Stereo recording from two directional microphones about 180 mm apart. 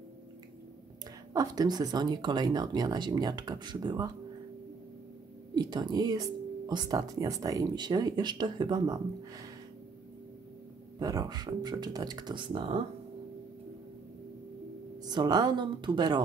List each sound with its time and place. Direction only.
1.3 s speech: 20° right (ahead or behind)
5.5 s speech: 25° right (ahead or behind)
11.0 s speech: 20° right (ahead or behind)
15.0 s speech: 20° right (ahead or behind)